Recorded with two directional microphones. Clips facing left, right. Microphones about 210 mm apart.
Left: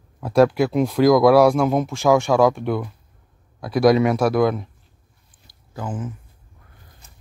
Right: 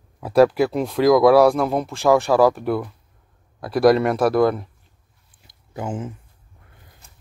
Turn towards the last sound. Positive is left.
turn(degrees=-25)  # may be behind; listen again after turning